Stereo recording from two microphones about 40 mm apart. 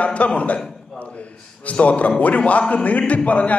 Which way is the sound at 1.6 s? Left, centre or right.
Left.